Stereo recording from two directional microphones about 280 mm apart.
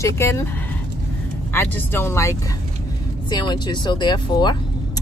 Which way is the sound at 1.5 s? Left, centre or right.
Centre.